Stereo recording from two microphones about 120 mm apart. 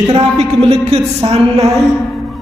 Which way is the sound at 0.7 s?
60° right (ahead or behind).